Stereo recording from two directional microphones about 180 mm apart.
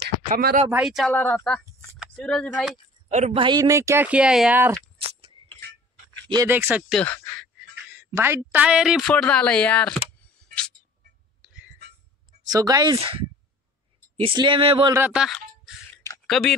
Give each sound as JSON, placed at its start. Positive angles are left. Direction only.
{"t": 0.3, "sound": "speech", "side_deg": -60}
{"t": 0.7, "sound": "a woman's voice", "side_deg": -5}
{"t": 3.1, "sound": "speech", "side_deg": -40}
{"t": 3.4, "sound": "speech", "side_deg": -20}
{"t": 5.4, "sound": "tick-tock", "side_deg": -30}
{"t": 6.3, "sound": "speech", "side_deg": -15}
{"t": 6.9, "sound": "speech", "side_deg": 5}
{"t": 7.7, "sound": "a sound", "side_deg": -10}
{"t": 8.1, "sound": "speech", "side_deg": -15}
{"t": 11.4, "sound": "a sound", "side_deg": -5}
{"t": 12.4, "sound": "speech", "side_deg": -20}
{"t": 13.0, "sound": "speech", "side_deg": -30}
{"t": 14.9, "sound": "speech", "side_deg": -10}